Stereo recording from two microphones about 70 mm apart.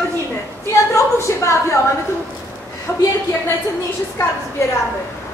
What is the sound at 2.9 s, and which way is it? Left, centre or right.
Speech, left.